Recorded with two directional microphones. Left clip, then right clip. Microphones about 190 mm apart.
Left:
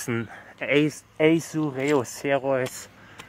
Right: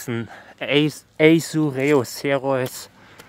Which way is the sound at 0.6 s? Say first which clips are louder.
Right 3 dB; 40° right (ahead or behind).